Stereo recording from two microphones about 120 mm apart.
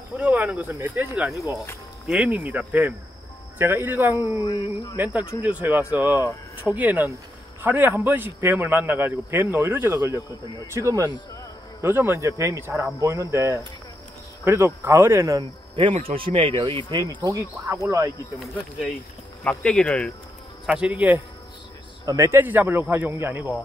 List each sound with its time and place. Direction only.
0.2 s a man's voice: 10° right (ahead or behind)
4.4 s speech: 30° left (ahead or behind)
4.9 s a man's voice: 15° right (ahead or behind)
15.7 s speech: 50° right (ahead or behind)
17.1 s a man's voice: 35° right (ahead or behind)
18.4 s speech: centre (ahead or behind)
20.6 s a man's voice: 10° right (ahead or behind)
22.0 s a man's voice: 25° right (ahead or behind)